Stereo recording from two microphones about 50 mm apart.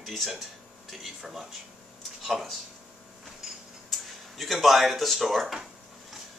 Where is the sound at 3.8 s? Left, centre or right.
Centre.